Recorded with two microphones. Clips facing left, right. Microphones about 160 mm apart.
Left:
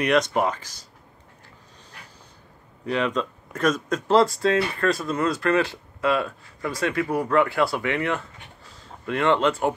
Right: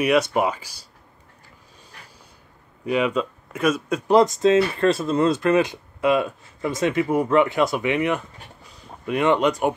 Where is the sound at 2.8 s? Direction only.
10° right (ahead or behind).